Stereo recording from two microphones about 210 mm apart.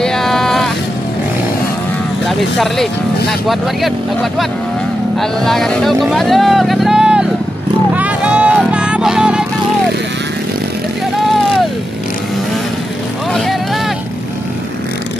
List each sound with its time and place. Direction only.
0.0 s vehicle: centre (ahead or behind)
2.2 s speech: centre (ahead or behind)
7.9 s music: 5° right (ahead or behind)
11.1 s vehicle: centre (ahead or behind)
13.3 s vehicle: centre (ahead or behind)